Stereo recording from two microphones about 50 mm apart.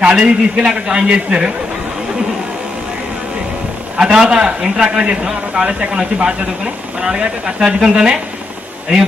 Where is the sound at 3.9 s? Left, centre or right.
Centre.